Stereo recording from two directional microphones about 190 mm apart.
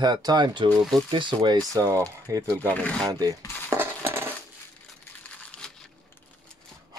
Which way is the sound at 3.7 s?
15° right (ahead or behind).